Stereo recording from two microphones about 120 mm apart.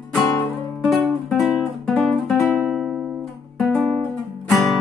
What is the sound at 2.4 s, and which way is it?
Music, 15° left (ahead or behind).